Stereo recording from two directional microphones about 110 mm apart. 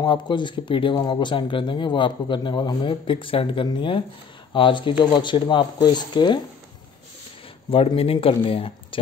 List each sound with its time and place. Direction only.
0.0 s speech: 45° left (ahead or behind)
7.7 s speech: 55° left (ahead or behind)